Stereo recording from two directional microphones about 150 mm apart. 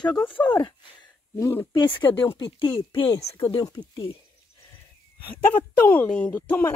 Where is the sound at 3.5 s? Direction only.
30° left (ahead or behind).